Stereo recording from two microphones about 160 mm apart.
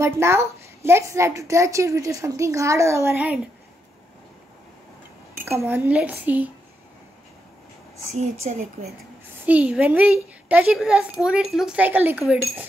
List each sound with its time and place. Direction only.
0.0 s a woman's voice: 15° right (ahead or behind)
5.3 s speech: 15° right (ahead or behind)
8.2 s speech: 50° right (ahead or behind)
9.5 s speech: 10° right (ahead or behind)